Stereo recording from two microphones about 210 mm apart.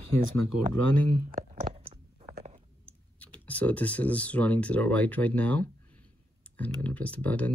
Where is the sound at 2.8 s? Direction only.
5° left (ahead or behind).